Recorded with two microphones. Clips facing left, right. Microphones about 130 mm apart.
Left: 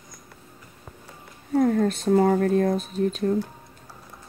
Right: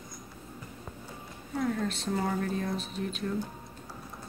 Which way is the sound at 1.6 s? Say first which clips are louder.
Left 10 dB; 50° left (ahead or behind).